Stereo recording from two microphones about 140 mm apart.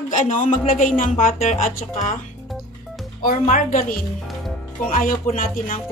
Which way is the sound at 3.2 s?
80° left.